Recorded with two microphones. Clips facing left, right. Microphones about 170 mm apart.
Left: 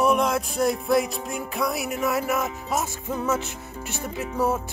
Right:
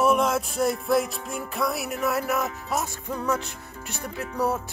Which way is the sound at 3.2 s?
5° left (ahead or behind).